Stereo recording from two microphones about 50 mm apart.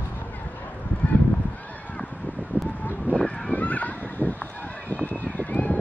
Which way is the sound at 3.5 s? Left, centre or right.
Left.